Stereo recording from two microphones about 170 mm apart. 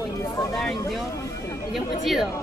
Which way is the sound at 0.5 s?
Centre (ahead or behind).